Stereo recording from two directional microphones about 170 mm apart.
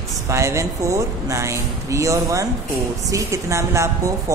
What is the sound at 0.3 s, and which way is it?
A woman's voice, 15° right (ahead or behind).